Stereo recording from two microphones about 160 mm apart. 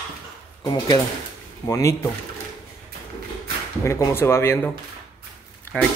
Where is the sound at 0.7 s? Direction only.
25° left (ahead or behind).